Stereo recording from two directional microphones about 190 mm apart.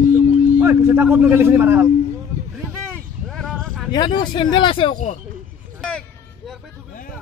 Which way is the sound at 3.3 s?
Centre (ahead or behind).